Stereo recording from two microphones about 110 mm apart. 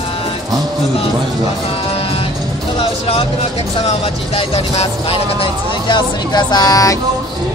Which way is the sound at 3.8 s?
70° left (ahead or behind).